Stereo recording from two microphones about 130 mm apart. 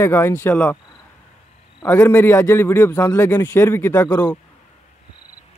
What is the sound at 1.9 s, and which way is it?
A man's voice, 20° left (ahead or behind).